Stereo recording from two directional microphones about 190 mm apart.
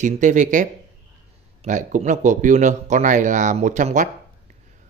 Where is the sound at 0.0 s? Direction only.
40° right (ahead or behind).